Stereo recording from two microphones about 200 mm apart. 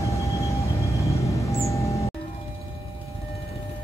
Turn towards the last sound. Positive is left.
turn(degrees=15)  # may be behind; listen again after turning